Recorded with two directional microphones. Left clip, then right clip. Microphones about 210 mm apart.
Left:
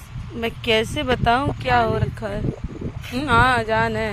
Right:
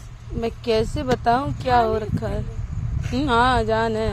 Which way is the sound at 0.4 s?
5° right (ahead or behind).